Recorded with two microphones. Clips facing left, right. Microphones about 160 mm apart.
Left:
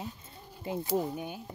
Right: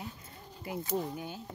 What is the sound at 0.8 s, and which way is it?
Speech, 10° left (ahead or behind).